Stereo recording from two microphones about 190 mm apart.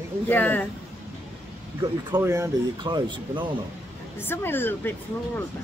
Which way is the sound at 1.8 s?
15° right (ahead or behind).